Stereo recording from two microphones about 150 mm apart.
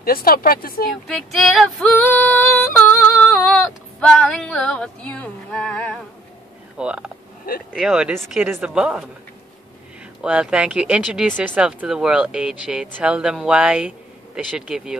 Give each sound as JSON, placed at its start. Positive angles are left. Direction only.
{"t": 0.0, "sound": "speech", "side_deg": 75}
{"t": 1.0, "sound": "female singing", "side_deg": 0}
{"t": 4.0, "sound": "speech", "side_deg": 5}
{"t": 6.8, "sound": "speech", "side_deg": -5}
{"t": 10.2, "sound": "speech", "side_deg": -5}